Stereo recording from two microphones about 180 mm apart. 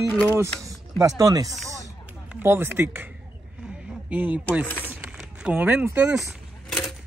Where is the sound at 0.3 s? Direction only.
15° right (ahead or behind).